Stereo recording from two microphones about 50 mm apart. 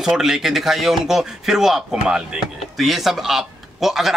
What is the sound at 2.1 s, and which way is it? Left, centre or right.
Speech, centre.